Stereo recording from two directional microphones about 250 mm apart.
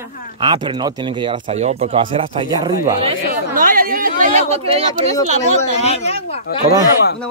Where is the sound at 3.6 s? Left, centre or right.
Right.